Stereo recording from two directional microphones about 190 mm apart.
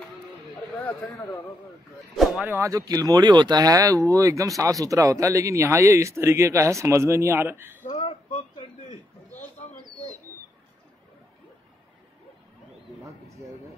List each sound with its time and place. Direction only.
0.8 s speech: 10° left (ahead or behind)
2.1 s speech: 5° right (ahead or behind)
7.8 s a sound: 35° left (ahead or behind)